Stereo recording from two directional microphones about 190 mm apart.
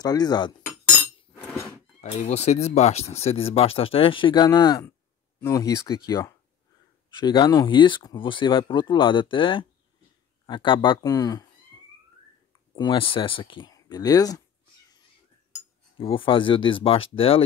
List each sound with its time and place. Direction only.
0.0 s cutlery: 20° left (ahead or behind)
0.9 s glass: 5° left (ahead or behind)
2.0 s speech: 35° left (ahead or behind); by 11.4 s 20° left (ahead or behind)
12.7 s speech: 25° left (ahead or behind)
16.0 s speech: 30° left (ahead or behind)